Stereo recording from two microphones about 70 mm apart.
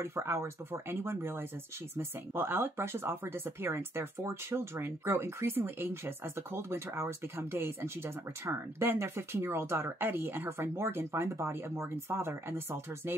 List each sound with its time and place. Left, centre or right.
0.0 s speech: right